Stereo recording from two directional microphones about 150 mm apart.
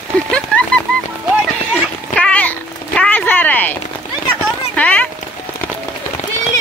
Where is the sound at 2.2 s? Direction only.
10° left (ahead or behind).